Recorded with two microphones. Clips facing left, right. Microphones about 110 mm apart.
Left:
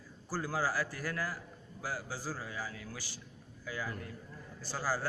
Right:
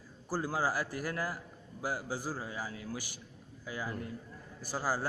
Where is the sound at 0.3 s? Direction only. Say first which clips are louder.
Right 2 dB; 20° right (ahead or behind).